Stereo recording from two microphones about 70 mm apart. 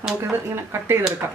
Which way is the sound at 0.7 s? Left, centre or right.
Right.